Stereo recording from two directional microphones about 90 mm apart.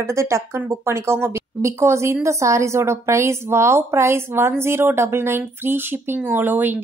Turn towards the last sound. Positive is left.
turn(degrees=-20)  # may be behind; listen again after turning